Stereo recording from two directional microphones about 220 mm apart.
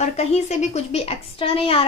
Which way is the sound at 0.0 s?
30° left (ahead or behind).